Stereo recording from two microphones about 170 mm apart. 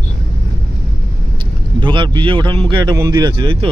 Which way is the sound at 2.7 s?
20° right (ahead or behind).